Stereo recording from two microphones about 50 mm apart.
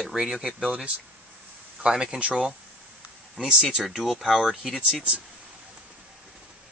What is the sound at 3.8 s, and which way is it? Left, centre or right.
Speech, centre.